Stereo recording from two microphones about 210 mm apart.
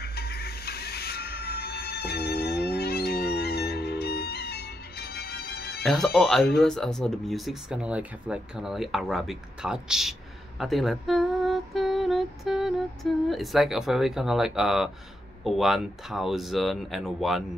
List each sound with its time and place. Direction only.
0.0 s music: 50° left (ahead or behind)
5.9 s speech: centre (ahead or behind)
10.6 s a sound: centre (ahead or behind)
15.4 s speech: centre (ahead or behind)